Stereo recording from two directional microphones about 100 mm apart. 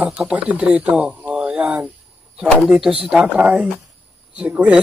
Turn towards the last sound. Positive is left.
turn(degrees=-15)  # may be behind; listen again after turning